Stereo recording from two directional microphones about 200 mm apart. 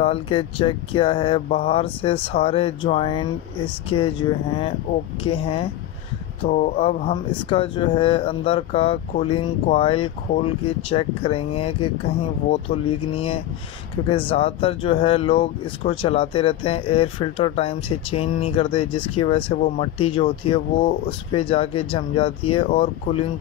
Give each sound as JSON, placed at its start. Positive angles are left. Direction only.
{"t": 0.0, "sound": "speech", "side_deg": 25}
{"t": 6.4, "sound": "speech", "side_deg": 40}